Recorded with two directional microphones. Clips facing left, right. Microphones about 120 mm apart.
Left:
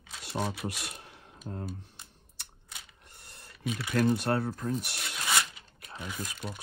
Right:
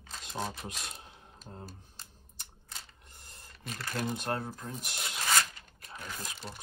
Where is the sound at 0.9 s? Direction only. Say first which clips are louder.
Left 2 dB; 65° left (ahead or behind).